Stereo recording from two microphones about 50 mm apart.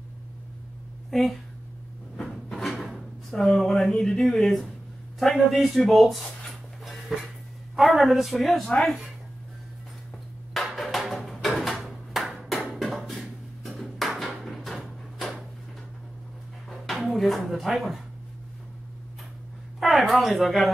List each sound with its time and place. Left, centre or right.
1.1 s speech: centre
2.5 s music: centre
3.3 s speech: centre
3.5 s a sound: centre
5.2 s speech: centre
10.5 s a sound: centre
15.1 s drawer open or close: centre
16.6 s a sound: centre
17.1 s speech: centre
19.8 s speech: centre